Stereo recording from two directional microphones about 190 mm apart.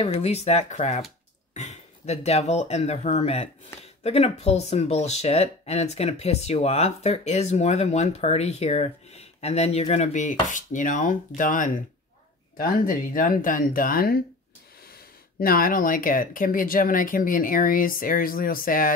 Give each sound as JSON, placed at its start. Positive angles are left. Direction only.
{"t": 0.0, "sound": "speech", "side_deg": 35}